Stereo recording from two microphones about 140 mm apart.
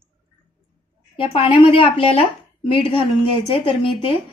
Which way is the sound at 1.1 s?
40° left (ahead or behind).